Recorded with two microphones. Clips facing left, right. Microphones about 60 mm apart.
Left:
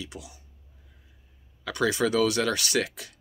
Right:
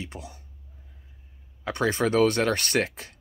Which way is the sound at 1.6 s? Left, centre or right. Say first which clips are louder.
Even; right.